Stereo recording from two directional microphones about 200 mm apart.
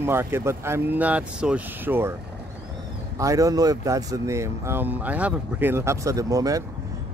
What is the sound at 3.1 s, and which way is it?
Speech, 15° right (ahead or behind).